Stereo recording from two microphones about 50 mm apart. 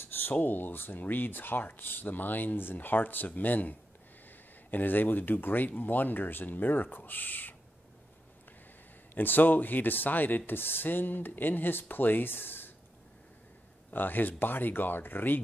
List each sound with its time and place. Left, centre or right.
0.0 s speech: left
9.1 s speech: left
13.8 s speech: left